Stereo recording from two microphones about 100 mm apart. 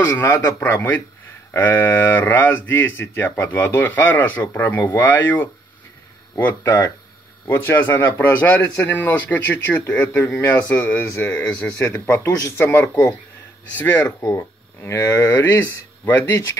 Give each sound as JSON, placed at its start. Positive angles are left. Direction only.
{"t": 0.2, "sound": "speech", "side_deg": 25}
{"t": 14.2, "sound": "speech", "side_deg": 30}